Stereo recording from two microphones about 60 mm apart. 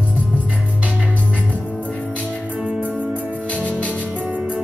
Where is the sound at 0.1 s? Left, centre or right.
Right.